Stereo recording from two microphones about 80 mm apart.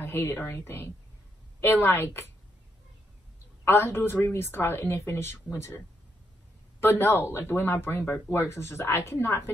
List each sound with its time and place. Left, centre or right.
0.0 s speech: left
3.6 s speech: left
6.8 s speech: left